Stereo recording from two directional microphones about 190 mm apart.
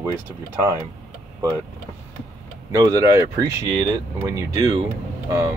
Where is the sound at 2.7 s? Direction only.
20° right (ahead or behind).